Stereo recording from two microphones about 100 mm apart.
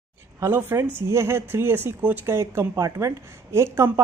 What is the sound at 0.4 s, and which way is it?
Speech, 25° right (ahead or behind).